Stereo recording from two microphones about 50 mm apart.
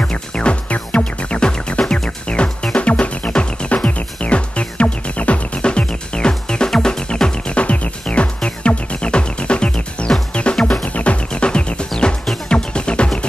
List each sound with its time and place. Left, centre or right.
0.0 s music: left
10.9 s music: left